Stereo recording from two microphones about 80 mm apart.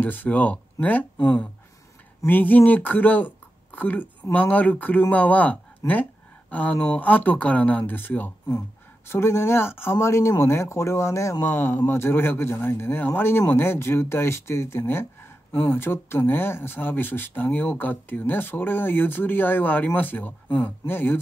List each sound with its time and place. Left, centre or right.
0.0 s speech: left